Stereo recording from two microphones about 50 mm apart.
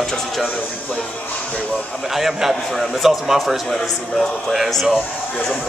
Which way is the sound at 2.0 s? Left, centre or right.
Centre.